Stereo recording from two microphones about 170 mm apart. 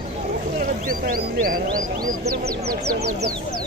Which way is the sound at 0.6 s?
55° right (ahead or behind).